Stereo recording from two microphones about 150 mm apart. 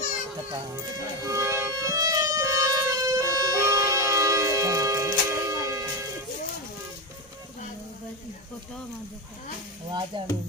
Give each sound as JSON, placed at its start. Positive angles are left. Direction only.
{"t": 0.7, "sound": "music", "side_deg": -20}
{"t": 10.1, "sound": "speech", "side_deg": -30}